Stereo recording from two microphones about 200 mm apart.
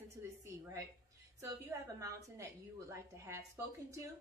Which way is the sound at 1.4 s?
15° right (ahead or behind).